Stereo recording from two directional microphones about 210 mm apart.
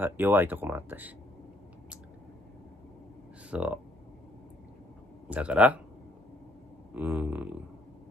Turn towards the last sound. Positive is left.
turn(degrees=-10)  # may be behind; listen again after turning